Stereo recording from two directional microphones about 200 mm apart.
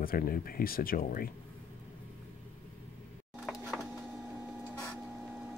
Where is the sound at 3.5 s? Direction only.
Centre (ahead or behind).